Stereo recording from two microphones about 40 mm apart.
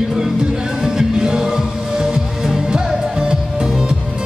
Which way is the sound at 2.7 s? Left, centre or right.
Centre.